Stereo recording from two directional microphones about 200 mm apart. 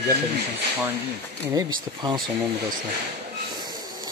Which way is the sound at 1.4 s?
15° right (ahead or behind).